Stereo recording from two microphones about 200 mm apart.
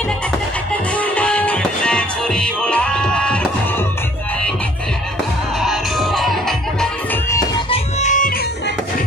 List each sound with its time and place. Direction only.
0.9 s music: 5° left (ahead or behind)
5.6 s music: centre (ahead or behind)
7.7 s music: 35° left (ahead or behind)